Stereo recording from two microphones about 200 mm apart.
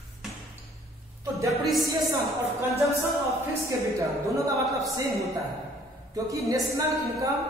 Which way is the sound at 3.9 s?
15° right (ahead or behind).